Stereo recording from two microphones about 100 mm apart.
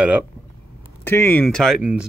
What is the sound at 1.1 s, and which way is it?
Speech, 20° left (ahead or behind).